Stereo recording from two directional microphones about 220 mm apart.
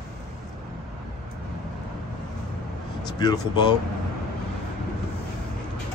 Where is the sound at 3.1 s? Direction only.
20° left (ahead or behind).